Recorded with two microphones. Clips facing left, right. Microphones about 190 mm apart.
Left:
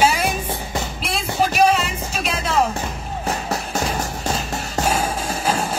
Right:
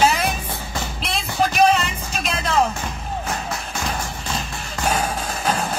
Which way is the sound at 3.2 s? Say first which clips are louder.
Left 3 dB; 35° left (ahead or behind).